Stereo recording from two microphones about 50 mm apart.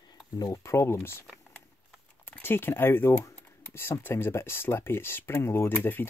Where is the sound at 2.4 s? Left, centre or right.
Left.